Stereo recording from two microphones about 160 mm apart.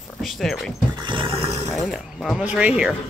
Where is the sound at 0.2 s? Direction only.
Centre (ahead or behind).